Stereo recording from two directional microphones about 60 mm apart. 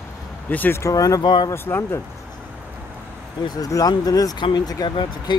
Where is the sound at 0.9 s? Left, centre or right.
Left.